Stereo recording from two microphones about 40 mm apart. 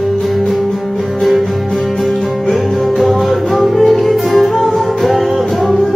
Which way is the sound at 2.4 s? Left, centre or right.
Centre.